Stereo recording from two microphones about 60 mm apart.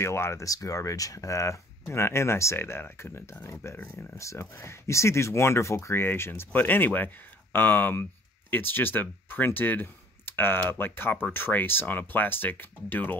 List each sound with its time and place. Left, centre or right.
0.0 s speech: left
0.5 s speech: left
4.2 s speech: left